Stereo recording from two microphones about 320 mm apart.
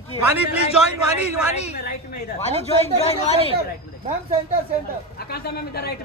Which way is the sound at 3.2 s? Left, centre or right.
Centre.